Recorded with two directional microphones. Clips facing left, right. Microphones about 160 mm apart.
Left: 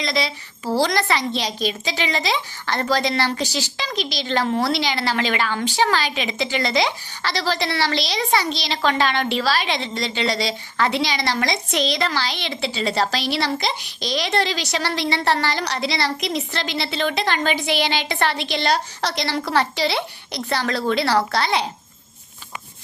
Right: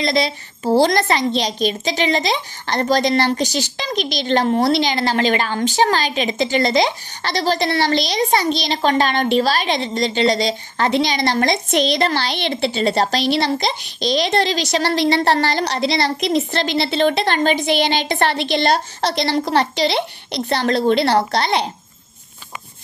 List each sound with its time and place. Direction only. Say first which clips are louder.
0.0 s a woman's voice: right 5 dB; 50° right (ahead or behind)
1.3 s a woman's voice: right 5 dB; 20° right (ahead or behind)
3.3 s a woman's voice: right 4 dB; 20° right (ahead or behind)
4.0 s a child's voice: right 5 dB; 55° right (ahead or behind)
13.0 s a woman's voice: right 4 dB; 25° right (ahead or behind)
14.4 s a woman's voice: right 5 dB; 40° right (ahead or behind)
15.6 s a woman's voice: right 5 dB; 25° right (ahead or behind)
17.9 s a woman's voice: right 4 dB; 45° right (ahead or behind)
18.3 s a child's voice: right 4 dB; 60° right (ahead or behind)
18.9 s a woman's voice: right 5 dB; 25° right (ahead or behind)